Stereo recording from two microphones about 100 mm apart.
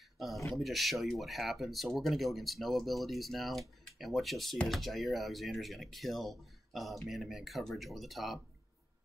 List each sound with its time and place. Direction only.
0.5 s speech: centre (ahead or behind)